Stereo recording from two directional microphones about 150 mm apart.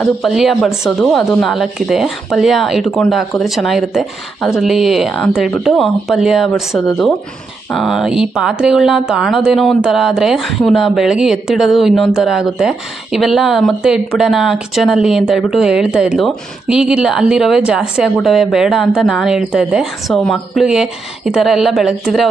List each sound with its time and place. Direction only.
0.0 s speech: centre (ahead or behind)
0.7 s speech: 15° left (ahead or behind)
1.1 s speech: centre (ahead or behind)